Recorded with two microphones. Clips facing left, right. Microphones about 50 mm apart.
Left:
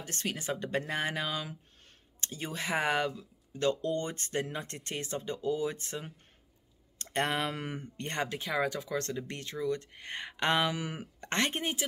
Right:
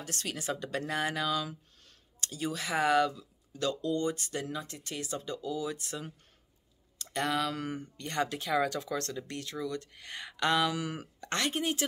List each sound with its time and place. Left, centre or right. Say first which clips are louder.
0.0 s speech: left 1 dB; left
4.9 s speech: left 1 dB; left